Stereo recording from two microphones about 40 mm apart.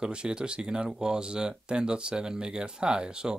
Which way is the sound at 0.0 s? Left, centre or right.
Right.